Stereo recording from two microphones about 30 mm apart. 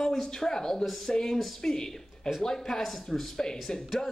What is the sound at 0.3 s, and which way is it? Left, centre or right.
A man's voice, left.